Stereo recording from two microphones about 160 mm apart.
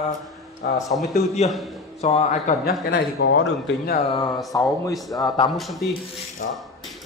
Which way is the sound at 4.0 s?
35° left (ahead or behind).